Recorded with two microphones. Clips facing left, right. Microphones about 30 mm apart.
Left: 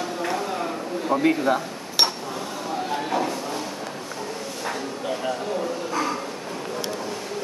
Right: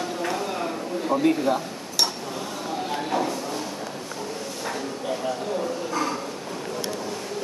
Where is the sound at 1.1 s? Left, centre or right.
Centre.